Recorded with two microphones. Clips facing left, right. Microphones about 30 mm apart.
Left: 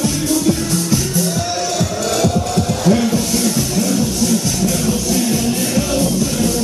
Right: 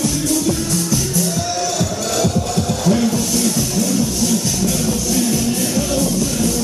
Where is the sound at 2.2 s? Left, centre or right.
Centre.